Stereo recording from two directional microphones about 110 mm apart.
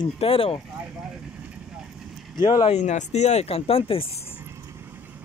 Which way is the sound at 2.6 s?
90° left.